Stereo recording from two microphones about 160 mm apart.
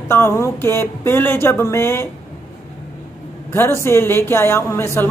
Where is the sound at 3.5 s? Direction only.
15° left (ahead or behind).